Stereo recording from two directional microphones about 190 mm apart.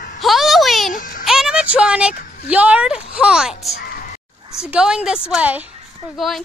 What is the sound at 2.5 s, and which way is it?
A woman's voice, 5° right (ahead or behind).